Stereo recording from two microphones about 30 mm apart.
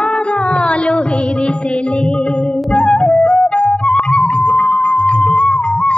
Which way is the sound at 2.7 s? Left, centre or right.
Left.